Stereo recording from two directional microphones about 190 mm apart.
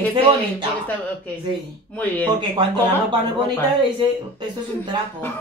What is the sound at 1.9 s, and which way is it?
Speech, 10° left (ahead or behind).